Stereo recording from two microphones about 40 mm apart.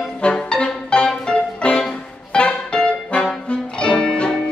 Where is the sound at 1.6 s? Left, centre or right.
Left.